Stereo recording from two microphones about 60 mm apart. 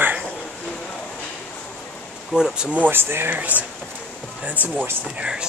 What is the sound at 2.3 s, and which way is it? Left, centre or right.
Speech, centre.